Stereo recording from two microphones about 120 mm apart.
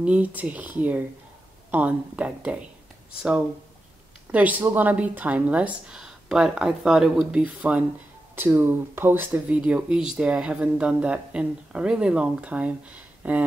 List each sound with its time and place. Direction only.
0.0 s speech: 10° right (ahead or behind)